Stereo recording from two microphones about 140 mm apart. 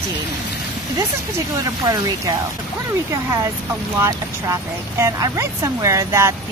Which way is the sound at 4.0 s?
25° right (ahead or behind).